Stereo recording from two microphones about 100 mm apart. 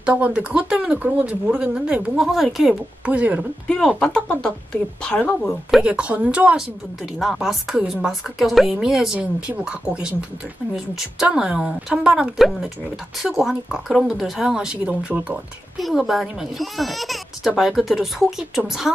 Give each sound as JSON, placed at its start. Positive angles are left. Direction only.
{"t": 0.0, "sound": "a woman's voice", "side_deg": -15}
{"t": 3.1, "sound": "speech", "side_deg": -15}
{"t": 3.6, "sound": "speech", "side_deg": 5}
{"t": 5.8, "sound": "a woman's voice", "side_deg": -10}
{"t": 15.8, "sound": "a woman's voice", "side_deg": 0}